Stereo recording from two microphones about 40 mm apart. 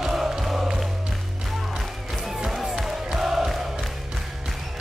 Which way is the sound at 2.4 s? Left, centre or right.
Centre.